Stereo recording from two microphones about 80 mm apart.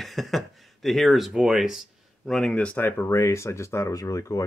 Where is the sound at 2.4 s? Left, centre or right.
Centre; by 4.4 s left.